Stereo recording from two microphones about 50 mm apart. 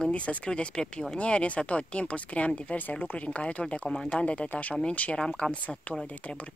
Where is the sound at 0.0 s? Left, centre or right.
Left.